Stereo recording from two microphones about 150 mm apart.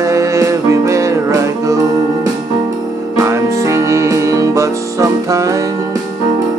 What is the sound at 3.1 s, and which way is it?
Music, 20° right (ahead or behind).